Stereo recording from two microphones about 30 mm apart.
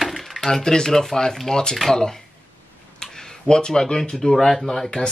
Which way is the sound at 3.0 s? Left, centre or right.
Centre.